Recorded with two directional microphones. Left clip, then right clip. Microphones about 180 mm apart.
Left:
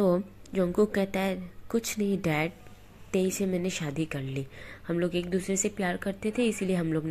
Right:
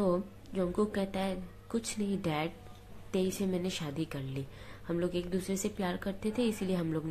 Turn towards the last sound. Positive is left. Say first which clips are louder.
# left 5 dB
turn(degrees=20)  # may be behind; listen again after turning